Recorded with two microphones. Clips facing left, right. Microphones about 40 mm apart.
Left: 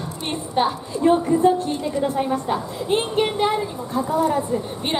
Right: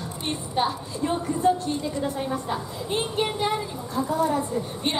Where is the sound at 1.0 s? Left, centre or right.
Left.